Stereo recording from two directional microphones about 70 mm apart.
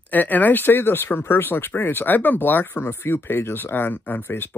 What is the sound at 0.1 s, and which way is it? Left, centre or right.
Speech, left.